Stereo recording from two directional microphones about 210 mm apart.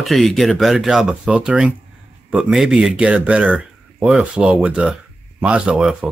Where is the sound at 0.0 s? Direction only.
Centre (ahead or behind).